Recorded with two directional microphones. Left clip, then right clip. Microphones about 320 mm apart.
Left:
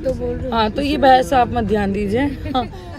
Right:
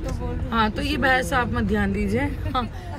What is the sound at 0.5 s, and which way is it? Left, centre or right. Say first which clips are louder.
Speech: left 4 dB; centre.